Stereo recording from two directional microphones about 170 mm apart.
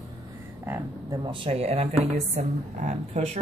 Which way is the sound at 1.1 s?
30° right (ahead or behind).